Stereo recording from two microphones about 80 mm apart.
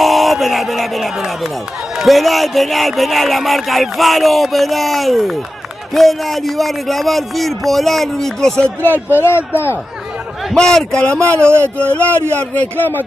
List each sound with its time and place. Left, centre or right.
0.0 s speech: centre
9.1 s a man's voice: left
10.5 s a man's voice: centre
11.4 s speech: right
11.9 s a man's voice: centre